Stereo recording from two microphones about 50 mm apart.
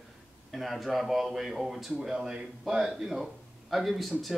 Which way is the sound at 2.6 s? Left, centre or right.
Centre.